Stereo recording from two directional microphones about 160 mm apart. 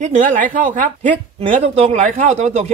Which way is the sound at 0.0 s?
45° right (ahead or behind).